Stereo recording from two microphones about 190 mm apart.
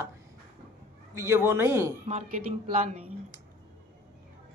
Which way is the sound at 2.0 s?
35° right (ahead or behind).